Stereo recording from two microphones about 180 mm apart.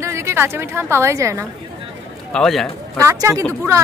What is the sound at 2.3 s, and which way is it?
Speech, centre (ahead or behind).